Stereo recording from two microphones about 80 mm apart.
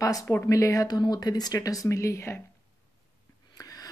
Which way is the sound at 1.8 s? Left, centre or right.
Left.